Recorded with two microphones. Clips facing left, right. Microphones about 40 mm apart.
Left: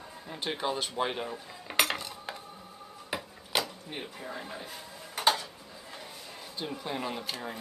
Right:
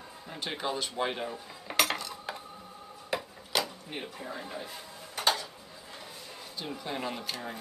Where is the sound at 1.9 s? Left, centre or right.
Centre.